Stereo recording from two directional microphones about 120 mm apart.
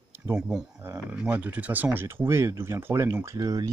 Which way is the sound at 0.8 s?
20° right (ahead or behind).